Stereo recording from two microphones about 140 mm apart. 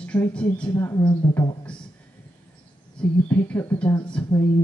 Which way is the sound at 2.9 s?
10° left (ahead or behind).